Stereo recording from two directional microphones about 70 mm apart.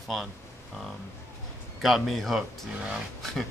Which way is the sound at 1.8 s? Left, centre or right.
Centre.